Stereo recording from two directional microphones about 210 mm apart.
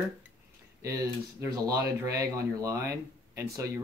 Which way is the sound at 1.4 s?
15° right (ahead or behind).